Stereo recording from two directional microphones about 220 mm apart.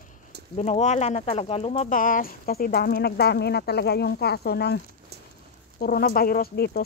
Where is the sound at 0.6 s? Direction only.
30° left (ahead or behind).